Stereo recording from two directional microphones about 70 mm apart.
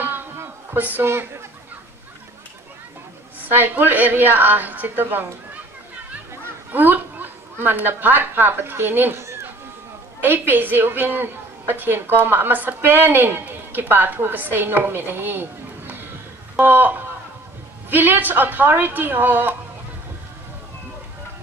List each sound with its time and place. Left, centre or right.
0.7 s a woman's voice: right
3.4 s a woman's voice: right
10.2 s a woman's voice: right
16.5 s a woman's voice: right